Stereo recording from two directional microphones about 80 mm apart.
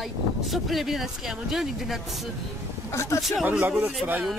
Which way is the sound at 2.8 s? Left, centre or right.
Left.